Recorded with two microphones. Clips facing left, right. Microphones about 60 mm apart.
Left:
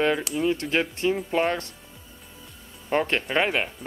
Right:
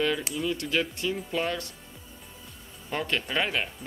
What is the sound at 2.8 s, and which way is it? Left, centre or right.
Speech, left.